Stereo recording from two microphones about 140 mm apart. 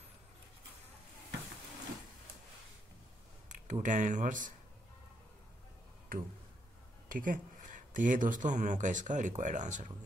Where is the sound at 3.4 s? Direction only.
65° right (ahead or behind).